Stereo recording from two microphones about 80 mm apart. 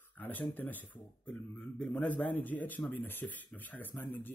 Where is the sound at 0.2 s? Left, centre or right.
Left.